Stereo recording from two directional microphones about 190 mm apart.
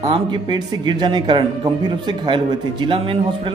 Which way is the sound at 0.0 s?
25° right (ahead or behind).